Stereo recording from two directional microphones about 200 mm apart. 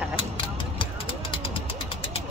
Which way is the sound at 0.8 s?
25° left (ahead or behind).